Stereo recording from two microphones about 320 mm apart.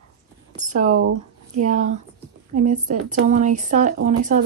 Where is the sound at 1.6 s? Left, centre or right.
Right.